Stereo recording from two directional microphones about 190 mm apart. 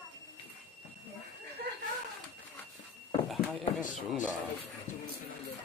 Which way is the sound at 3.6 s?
40° left (ahead or behind).